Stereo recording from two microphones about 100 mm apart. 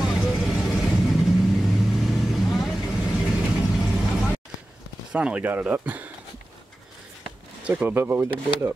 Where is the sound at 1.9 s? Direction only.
Centre (ahead or behind).